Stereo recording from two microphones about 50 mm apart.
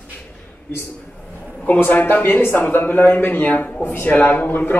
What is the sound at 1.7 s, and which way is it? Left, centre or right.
A man's voice, left.